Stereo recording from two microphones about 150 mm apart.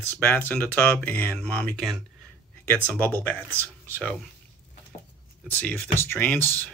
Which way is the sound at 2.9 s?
10° left (ahead or behind).